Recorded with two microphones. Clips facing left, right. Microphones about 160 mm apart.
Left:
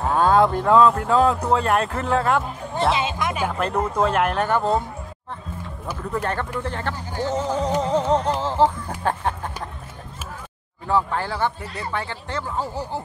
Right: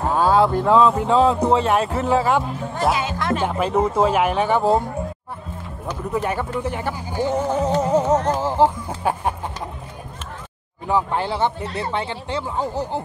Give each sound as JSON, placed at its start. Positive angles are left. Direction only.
{"t": 0.0, "sound": "cattle", "side_deg": -5}
{"t": 1.4, "sound": "speech", "side_deg": 0}
{"t": 2.9, "sound": "speech", "side_deg": 20}
{"t": 3.4, "sound": "speech", "side_deg": -5}
{"t": 6.1, "sound": "speech", "side_deg": -10}
{"t": 10.9, "sound": "speech", "side_deg": -15}